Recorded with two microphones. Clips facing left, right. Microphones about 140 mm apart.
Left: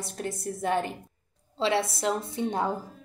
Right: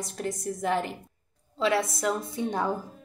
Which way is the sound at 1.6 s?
30° left (ahead or behind).